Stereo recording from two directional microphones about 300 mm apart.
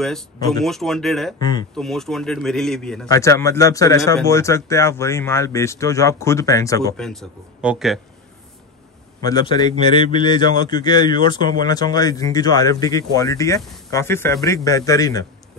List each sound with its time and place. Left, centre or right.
0.7 s speech: centre
1.4 s a man's voice: centre
1.8 s a man's voice: centre
9.2 s a man's voice: centre